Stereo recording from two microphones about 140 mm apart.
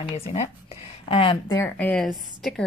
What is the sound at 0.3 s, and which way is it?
Speech, 45° left (ahead or behind).